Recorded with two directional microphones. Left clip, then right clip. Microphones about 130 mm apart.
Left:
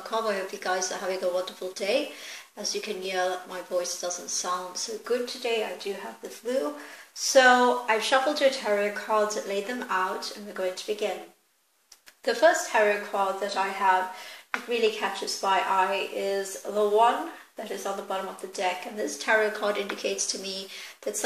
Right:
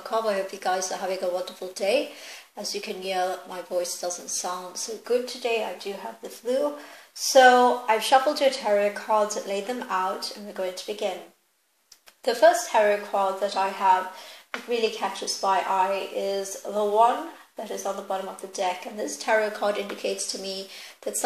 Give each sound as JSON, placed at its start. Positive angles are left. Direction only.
{"t": 0.1, "sound": "speech", "side_deg": -45}
{"t": 7.3, "sound": "speech", "side_deg": -40}
{"t": 12.3, "sound": "a woman's voice", "side_deg": -45}
{"t": 18.1, "sound": "speech", "side_deg": -35}